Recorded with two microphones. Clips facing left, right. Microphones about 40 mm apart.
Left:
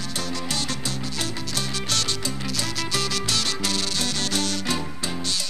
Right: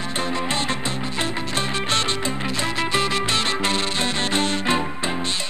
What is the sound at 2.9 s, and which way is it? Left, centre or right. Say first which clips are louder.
Music: right 4 dB; right.